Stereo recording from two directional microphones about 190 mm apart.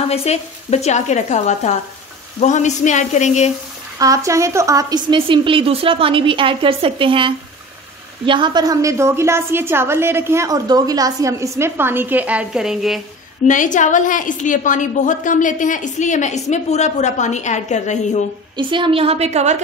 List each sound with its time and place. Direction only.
0.1 s a woman's voice: 35° left (ahead or behind)
4.0 s a woman's voice: 15° right (ahead or behind)
13.4 s a woman's voice: 40° left (ahead or behind)
18.6 s a woman's voice: 25° right (ahead or behind)